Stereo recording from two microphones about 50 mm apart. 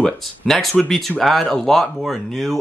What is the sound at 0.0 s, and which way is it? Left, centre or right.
Speech, centre.